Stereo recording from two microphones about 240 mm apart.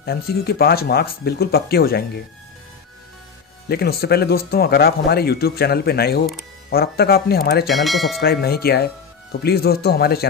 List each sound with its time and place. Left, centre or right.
0.0 s speech: left
3.6 s speech: left
7.6 s speech: centre
8.2 s speech: left